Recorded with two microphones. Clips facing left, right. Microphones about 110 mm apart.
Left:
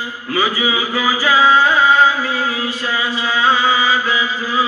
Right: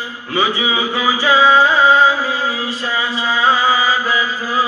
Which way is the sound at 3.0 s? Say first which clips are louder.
Right 1 dB; 30° right (ahead or behind).